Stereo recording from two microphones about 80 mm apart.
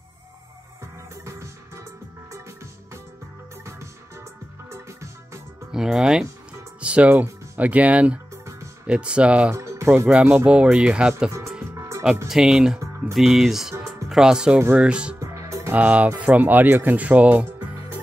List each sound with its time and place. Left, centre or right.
1.2 s music: right
4.6 s music: right
5.7 s speech: centre
9.5 s speech: right
10.2 s speech: centre
11.7 s music: right
12.3 s speech: centre
15.3 s music: right
15.7 s speech: centre